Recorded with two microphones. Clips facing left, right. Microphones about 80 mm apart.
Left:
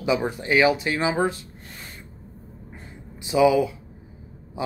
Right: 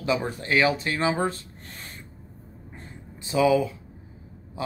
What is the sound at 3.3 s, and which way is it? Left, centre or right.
Speech, centre.